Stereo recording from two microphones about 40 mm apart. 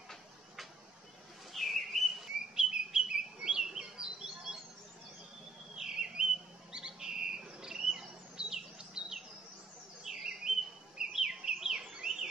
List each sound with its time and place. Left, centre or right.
1.5 s whistling: centre
2.5 s bird: centre
5.8 s bird: centre